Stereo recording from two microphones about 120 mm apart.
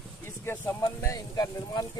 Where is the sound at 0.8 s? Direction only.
30° left (ahead or behind).